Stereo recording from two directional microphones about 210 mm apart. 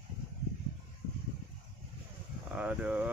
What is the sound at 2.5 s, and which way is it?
Speech, 5° right (ahead or behind).